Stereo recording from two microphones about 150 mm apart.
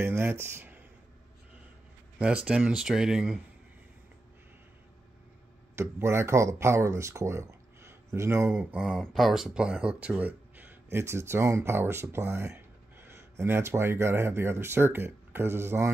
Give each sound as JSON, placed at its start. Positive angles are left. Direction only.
{"t": 0.0, "sound": "speech", "side_deg": -15}
{"t": 2.1, "sound": "speech", "side_deg": -5}
{"t": 5.8, "sound": "speech", "side_deg": -15}